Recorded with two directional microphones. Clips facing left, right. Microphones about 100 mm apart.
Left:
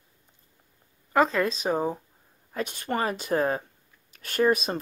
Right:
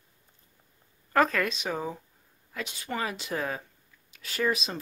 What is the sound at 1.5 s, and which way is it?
Speech, 40° left (ahead or behind).